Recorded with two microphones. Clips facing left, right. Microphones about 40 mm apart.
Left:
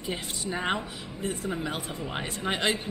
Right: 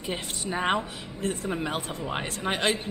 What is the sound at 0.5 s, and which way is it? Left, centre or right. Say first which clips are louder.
A woman's voice: right 3 dB; centre.